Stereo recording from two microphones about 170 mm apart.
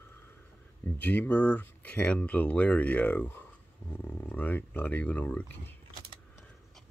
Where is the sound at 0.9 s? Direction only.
10° left (ahead or behind).